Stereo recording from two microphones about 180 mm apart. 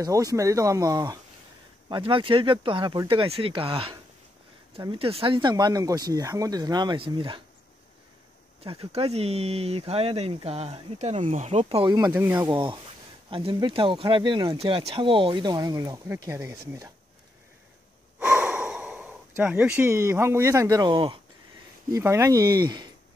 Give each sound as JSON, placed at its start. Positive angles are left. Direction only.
{"t": 0.0, "sound": "speech", "side_deg": -20}
{"t": 8.6, "sound": "speech", "side_deg": -35}
{"t": 12.1, "sound": "speech", "side_deg": -10}
{"t": 12.4, "sound": "speech", "side_deg": -25}
{"t": 14.6, "sound": "speech", "side_deg": -35}
{"t": 18.2, "sound": "speech", "side_deg": -5}
{"t": 21.9, "sound": "speech", "side_deg": -15}